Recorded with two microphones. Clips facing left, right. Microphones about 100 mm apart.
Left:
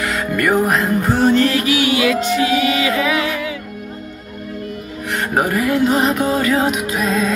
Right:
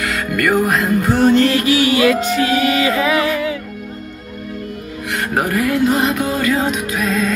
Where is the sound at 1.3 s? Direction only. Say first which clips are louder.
Right 2 dB; 30° right (ahead or behind).